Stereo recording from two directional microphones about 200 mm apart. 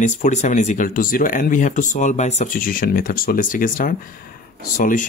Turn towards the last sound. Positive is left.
turn(degrees=40)  # may be behind; listen again after turning